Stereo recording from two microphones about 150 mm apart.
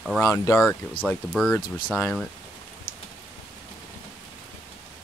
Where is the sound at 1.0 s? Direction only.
5° left (ahead or behind).